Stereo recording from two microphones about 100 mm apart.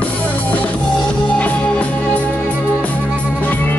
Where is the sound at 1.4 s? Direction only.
15° left (ahead or behind).